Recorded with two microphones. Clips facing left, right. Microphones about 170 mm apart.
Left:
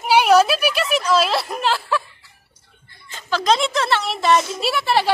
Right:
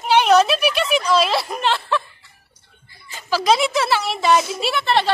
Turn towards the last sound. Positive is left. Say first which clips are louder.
# even
turn(degrees=10)  # may be behind; listen again after turning